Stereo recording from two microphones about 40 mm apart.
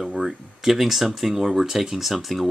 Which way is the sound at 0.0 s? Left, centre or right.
Centre.